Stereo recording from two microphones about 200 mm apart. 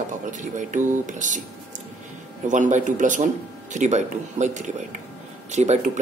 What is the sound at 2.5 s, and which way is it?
A man's voice, 40° right (ahead or behind).